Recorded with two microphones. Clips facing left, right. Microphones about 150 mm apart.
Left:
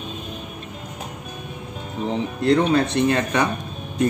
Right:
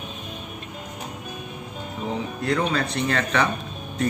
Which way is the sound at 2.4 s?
25° left (ahead or behind).